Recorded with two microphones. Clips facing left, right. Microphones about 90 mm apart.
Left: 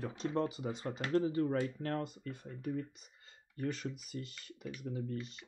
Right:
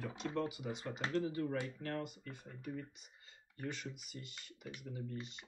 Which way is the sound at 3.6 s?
45° left (ahead or behind).